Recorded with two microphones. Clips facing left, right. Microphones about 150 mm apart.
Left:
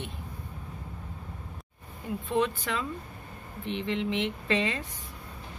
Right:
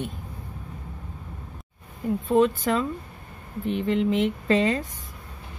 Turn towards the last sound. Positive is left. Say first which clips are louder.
# right 7 dB
turn(degrees=-40)  # may be behind; listen again after turning